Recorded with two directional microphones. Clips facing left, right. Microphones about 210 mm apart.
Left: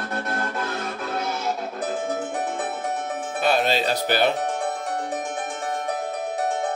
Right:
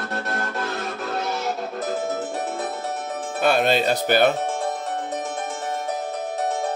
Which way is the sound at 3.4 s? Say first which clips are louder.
Right 2 dB; 50° right (ahead or behind).